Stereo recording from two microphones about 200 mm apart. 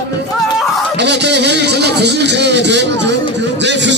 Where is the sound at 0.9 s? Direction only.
60° right (ahead or behind).